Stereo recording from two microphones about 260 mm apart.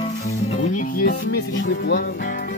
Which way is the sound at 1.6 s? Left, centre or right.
Left.